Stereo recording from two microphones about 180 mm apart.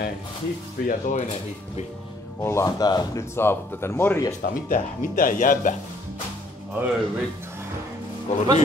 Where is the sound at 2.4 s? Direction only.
20° left (ahead or behind).